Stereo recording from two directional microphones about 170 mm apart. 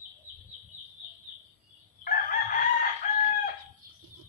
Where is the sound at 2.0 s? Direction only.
60° left (ahead or behind).